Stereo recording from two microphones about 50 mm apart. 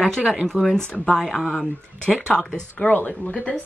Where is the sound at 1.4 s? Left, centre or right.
Left.